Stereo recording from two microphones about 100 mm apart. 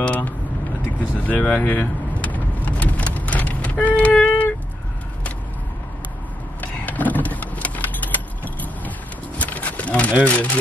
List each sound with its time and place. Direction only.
0.0 s vehicle: 15° left (ahead or behind)
6.6 s vehicle: 15° left (ahead or behind)
9.4 s a sound: 15° left (ahead or behind)
10.2 s speech: 15° left (ahead or behind)